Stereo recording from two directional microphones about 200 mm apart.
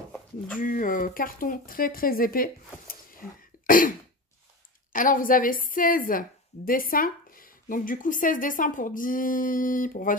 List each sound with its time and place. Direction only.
0.6 s speech: 45° left (ahead or behind)
4.9 s a woman's voice: 40° left (ahead or behind)